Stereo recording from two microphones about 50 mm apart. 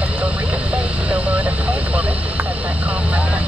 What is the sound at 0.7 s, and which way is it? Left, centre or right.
Vehicle, right.